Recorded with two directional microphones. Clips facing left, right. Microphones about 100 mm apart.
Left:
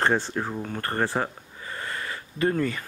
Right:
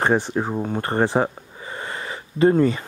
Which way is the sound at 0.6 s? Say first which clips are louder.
Right 6 dB; 20° right (ahead or behind).